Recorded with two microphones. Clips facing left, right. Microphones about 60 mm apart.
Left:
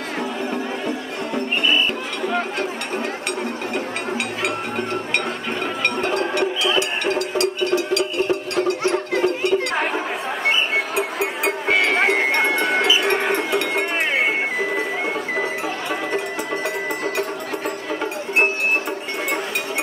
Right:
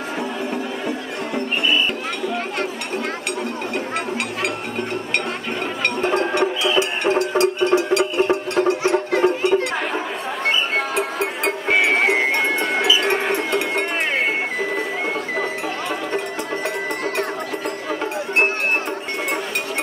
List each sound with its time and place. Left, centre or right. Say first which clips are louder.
6.0 s a sound: right 4 dB; right
8.6 s music: right 2 dB; right
11.0 s music: even; centre
11.7 s music: right 1 dB; centre
12.4 s music: left 1 dB; centre
13.1 s cowbell: even; centre